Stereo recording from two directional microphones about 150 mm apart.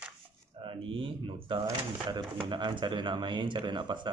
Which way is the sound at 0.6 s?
35° right (ahead or behind).